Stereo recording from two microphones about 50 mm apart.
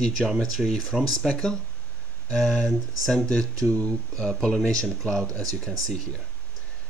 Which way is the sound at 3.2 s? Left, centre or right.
Centre.